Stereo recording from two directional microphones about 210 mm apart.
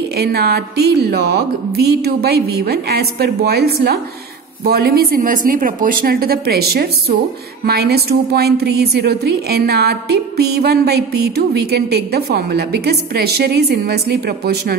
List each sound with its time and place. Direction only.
0.2 s a woman's voice: 50° right (ahead or behind)